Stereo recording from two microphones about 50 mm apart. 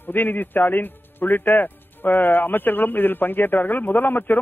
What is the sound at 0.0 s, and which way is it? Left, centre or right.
A man's voice, left.